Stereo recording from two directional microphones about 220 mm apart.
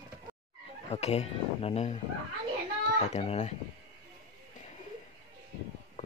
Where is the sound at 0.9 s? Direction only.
30° left (ahead or behind).